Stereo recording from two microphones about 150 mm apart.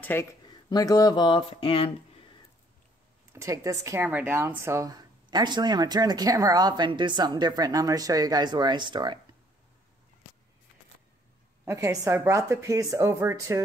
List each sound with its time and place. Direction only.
0.0 s speech: 15° left (ahead or behind)
0.7 s speech: 25° left (ahead or behind)
3.3 s speech: 20° right (ahead or behind)
11.6 s speech: 20° right (ahead or behind)